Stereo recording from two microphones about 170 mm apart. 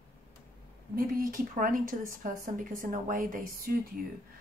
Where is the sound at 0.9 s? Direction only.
55° right (ahead or behind).